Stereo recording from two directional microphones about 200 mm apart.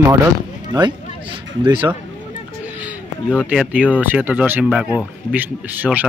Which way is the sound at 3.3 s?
5° right (ahead or behind).